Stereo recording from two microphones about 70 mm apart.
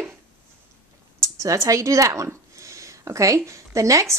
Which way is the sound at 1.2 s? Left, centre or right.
Right.